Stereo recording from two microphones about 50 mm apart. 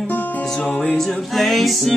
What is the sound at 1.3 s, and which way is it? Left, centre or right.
Music, centre.